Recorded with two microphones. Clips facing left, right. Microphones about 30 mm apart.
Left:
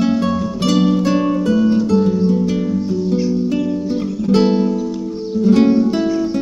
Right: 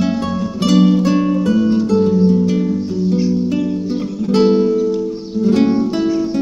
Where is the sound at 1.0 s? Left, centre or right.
Centre.